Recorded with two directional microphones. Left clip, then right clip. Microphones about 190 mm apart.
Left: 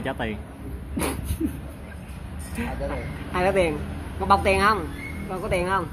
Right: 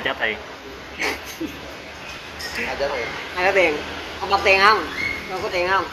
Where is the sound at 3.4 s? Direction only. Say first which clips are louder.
Right 4 dB; 55° left (ahead or behind).